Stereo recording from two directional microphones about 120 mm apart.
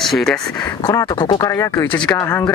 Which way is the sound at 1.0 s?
35° left (ahead or behind).